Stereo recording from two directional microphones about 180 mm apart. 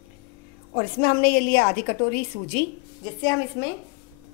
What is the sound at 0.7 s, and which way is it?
A woman's voice, 60° left (ahead or behind).